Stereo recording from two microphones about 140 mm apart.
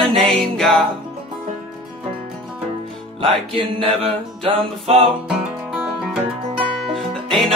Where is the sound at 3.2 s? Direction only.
40° right (ahead or behind).